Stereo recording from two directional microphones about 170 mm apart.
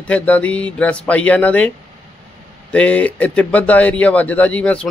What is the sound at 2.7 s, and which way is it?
Speech, 10° left (ahead or behind).